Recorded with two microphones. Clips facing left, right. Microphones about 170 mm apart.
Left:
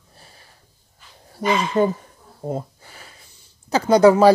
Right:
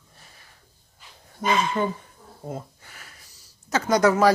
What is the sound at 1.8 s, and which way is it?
Speech, 40° left (ahead or behind).